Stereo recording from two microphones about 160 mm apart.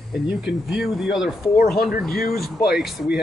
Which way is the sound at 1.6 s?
70° left (ahead or behind).